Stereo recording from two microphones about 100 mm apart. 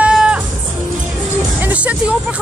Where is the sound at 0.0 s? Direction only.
10° right (ahead or behind).